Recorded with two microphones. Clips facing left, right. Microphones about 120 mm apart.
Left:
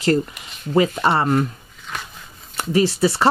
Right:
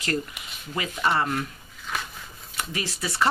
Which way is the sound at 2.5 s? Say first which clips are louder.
Left 14 dB; 30° left (ahead or behind).